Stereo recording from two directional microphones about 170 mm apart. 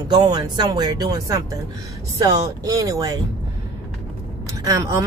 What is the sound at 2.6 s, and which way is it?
Speech, 20° right (ahead or behind).